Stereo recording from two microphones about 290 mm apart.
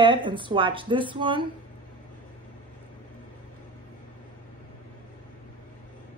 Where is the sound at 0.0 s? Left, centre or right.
Centre.